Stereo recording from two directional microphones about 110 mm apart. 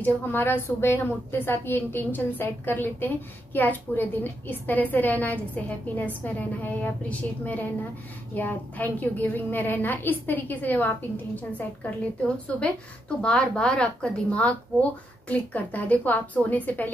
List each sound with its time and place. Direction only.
0.0 s a woman's voice: 20° left (ahead or behind)